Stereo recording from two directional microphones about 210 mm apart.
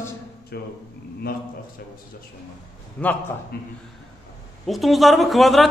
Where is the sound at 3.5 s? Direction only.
50° left (ahead or behind).